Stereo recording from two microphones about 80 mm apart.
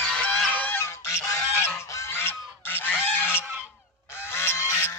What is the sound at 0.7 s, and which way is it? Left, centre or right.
Goose, left.